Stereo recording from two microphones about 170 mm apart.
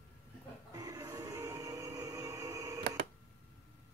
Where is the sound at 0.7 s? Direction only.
20° right (ahead or behind).